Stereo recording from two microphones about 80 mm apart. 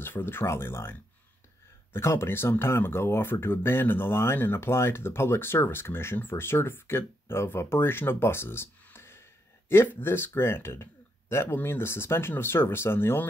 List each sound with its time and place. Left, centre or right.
0.0 s speech: left
2.0 s speech: left